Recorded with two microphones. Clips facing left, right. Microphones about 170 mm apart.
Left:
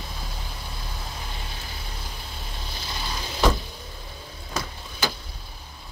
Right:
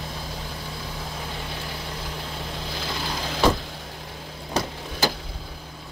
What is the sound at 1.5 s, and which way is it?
Vehicle, 75° right (ahead or behind).